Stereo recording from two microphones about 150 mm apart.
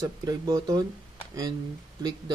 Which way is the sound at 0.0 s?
25° right (ahead or behind).